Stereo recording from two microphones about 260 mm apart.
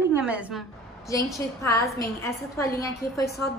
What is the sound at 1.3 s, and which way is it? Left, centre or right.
A woman's voice, centre.